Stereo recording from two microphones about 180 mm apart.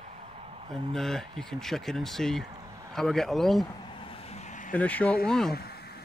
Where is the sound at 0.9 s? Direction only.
Centre (ahead or behind).